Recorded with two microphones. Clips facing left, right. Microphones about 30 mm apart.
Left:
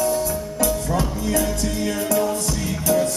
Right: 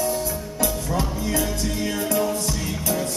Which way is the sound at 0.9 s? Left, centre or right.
Right.